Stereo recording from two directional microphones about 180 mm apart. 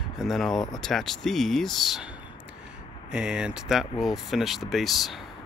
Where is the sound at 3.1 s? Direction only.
5° right (ahead or behind).